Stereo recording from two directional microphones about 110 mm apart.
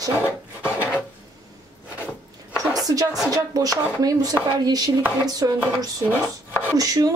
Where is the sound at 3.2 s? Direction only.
35° right (ahead or behind).